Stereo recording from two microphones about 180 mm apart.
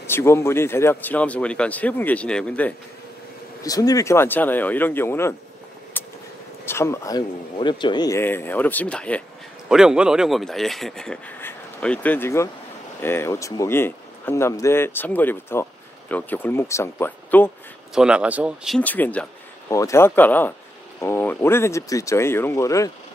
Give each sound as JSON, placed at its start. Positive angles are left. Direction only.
{"t": 0.0, "sound": "a man's voice", "side_deg": 15}
{"t": 3.6, "sound": "a man's voice", "side_deg": 20}
{"t": 6.0, "sound": "a sound", "side_deg": 10}
{"t": 6.6, "sound": "a man's voice", "side_deg": 15}
{"t": 9.7, "sound": "a man's voice", "side_deg": -5}
{"t": 17.9, "sound": "speech", "side_deg": -5}
{"t": 18.8, "sound": "a man's voice", "side_deg": 10}